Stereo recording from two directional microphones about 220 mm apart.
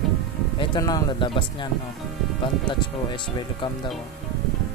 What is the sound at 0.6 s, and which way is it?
Speech, 15° left (ahead or behind).